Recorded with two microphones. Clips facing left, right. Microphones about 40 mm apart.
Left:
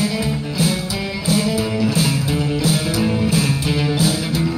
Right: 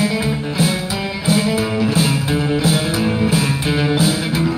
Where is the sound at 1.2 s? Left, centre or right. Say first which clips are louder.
Right 2 dB; right.